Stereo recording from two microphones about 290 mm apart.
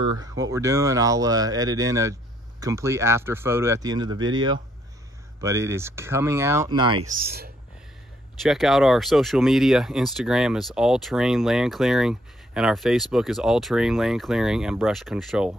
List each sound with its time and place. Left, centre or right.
0.2 s speech: centre
5.4 s speech: centre
7.1 s speech: right
8.4 s speech: centre